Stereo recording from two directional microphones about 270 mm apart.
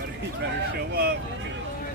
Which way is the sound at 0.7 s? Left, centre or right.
Right.